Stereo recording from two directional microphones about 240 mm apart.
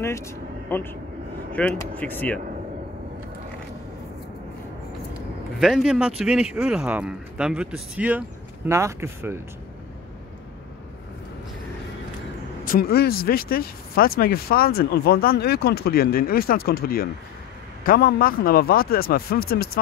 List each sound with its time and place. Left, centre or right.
0.7 s speech: centre
5.6 s speech: centre
12.6 s speech: left